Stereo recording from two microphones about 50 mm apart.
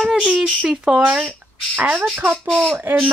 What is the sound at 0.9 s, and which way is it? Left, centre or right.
Speech, right.